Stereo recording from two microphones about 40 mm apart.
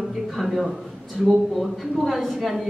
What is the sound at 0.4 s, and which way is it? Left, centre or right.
A man's voice, centre.